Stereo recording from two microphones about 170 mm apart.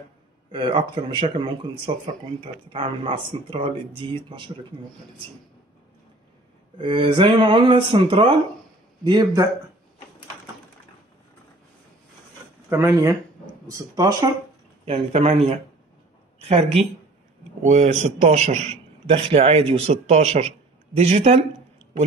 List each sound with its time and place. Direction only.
0.5 s a man's voice: 30° right (ahead or behind)
6.8 s speech: 30° right (ahead or behind)
12.6 s speech: 15° right (ahead or behind)
14.9 s a man's voice: 40° right (ahead or behind)